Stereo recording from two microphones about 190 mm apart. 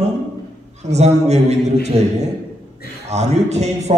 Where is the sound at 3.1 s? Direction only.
35° right (ahead or behind).